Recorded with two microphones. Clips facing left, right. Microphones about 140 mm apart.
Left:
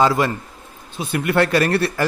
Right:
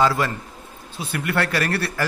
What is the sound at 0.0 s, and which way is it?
Speech, 20° left (ahead or behind).